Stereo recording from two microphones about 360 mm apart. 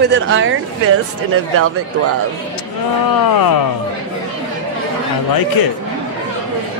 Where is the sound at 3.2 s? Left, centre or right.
Left.